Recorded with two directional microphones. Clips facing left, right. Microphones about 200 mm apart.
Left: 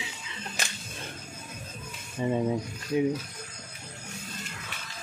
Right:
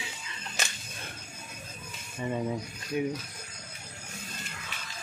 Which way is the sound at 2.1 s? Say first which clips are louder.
Left 5 dB; 20° left (ahead or behind).